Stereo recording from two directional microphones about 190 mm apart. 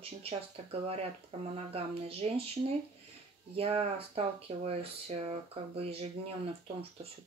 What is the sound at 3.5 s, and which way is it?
Speech, 30° right (ahead or behind).